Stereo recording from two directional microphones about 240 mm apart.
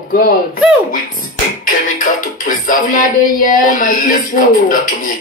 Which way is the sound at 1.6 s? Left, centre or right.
Left.